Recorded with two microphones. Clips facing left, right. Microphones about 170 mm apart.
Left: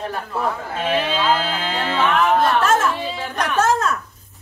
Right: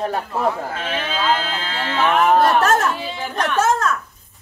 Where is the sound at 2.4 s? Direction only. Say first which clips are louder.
Right 1 dB; 40° right (ahead or behind).